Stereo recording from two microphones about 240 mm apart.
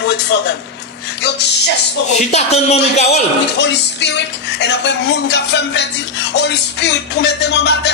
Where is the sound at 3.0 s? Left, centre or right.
Left.